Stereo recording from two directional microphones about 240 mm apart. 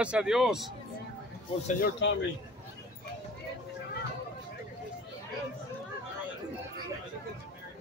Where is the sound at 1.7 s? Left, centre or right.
Left.